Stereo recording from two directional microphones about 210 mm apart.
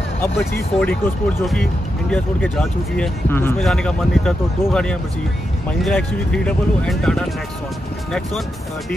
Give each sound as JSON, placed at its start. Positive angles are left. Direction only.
{"t": 0.7, "sound": "speech", "side_deg": 5}